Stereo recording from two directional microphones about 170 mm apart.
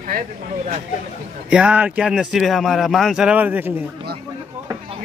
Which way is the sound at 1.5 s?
5° right (ahead or behind).